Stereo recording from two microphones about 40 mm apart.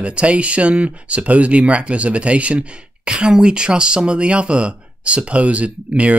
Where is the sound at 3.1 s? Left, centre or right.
Right.